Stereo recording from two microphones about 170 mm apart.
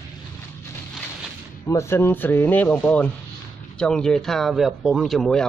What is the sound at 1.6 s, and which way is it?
Speech, 15° left (ahead or behind).